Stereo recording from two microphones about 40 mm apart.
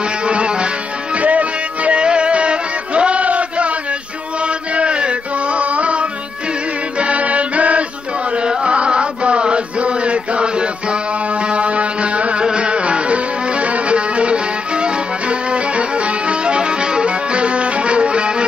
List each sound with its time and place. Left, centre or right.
0.3 s music: right
4.7 s a sound: right
7.0 s music: right
8.4 s chant: right
11.4 s music: right